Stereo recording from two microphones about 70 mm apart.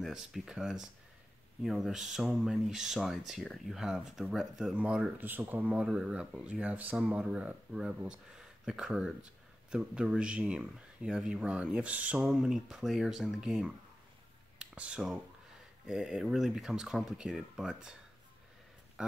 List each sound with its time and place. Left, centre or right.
0.0 s speech: centre
4.7 s speech: centre
5.1 s speech: right
5.9 s speech: centre
14.6 s a sound: centre
15.9 s speech: centre
19.0 s speech: centre